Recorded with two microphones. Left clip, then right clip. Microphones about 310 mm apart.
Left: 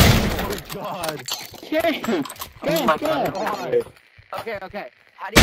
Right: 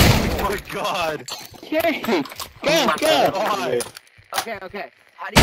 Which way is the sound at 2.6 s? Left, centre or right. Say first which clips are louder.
Right 4 dB; right.